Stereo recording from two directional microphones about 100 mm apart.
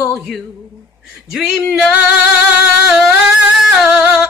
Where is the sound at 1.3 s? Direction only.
Centre (ahead or behind).